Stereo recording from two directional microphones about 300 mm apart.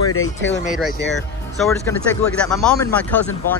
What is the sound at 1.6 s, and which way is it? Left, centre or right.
Speech, centre.